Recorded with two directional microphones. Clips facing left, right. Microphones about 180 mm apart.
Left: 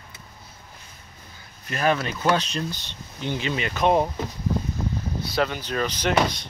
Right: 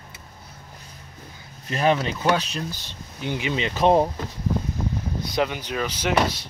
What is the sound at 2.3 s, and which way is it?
Speech, 5° right (ahead or behind).